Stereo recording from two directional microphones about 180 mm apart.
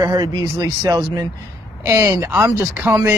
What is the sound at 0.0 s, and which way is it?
Speech, 20° right (ahead or behind).